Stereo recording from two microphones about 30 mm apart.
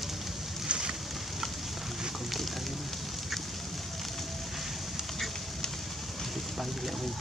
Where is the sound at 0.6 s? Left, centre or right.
Right.